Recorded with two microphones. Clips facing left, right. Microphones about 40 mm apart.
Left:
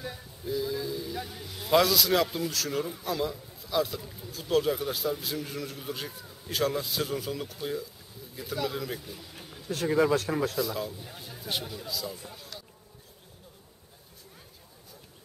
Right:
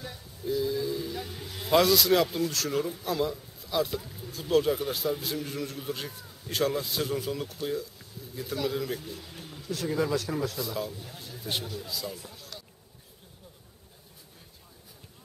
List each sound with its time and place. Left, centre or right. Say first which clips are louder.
0.0 s a sound: right 1 dB; centre
1.7 s a man's voice: right 1 dB; centre
9.8 s speech: left 5 dB; centre
10.6 s a man's voice: left 2 dB; centre
11.1 s a man's voice: right 1 dB; centre